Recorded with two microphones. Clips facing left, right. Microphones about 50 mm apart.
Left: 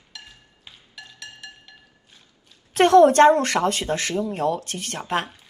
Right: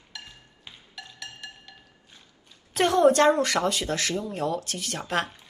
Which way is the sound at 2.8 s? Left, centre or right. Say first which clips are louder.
Left 6 dB; left.